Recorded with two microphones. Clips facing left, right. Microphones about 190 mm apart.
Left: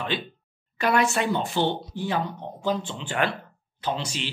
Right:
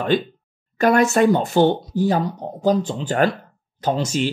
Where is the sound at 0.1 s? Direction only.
45° right (ahead or behind).